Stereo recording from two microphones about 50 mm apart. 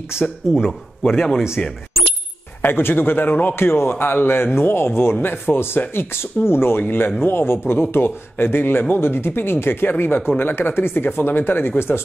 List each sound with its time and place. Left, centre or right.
0.7 s a man's voice: centre
1.6 s speech: left
2.6 s speech: left
3.5 s speech: left